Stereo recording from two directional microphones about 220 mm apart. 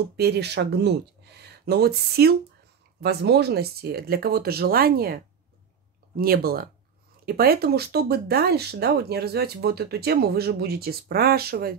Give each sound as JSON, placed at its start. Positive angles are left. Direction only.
{"t": 0.2, "sound": "speech", "side_deg": -50}